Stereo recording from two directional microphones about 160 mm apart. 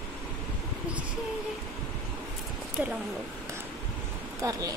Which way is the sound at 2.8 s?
5° right (ahead or behind).